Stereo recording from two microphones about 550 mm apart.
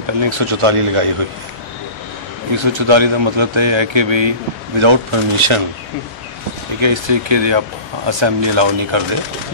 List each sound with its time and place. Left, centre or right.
0.0 s speech: right
2.5 s a man's voice: right
6.8 s a man's voice: right